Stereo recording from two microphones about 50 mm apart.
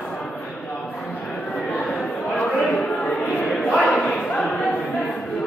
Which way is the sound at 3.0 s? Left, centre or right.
Centre.